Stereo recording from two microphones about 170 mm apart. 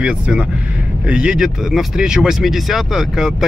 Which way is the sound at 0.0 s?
5° right (ahead or behind).